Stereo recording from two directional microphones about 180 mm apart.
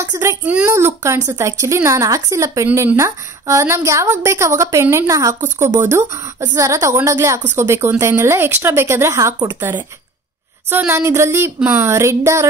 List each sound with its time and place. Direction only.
0.0 s speech: 15° right (ahead or behind)